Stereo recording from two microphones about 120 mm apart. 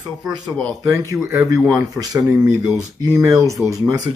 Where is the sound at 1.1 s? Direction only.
25° right (ahead or behind).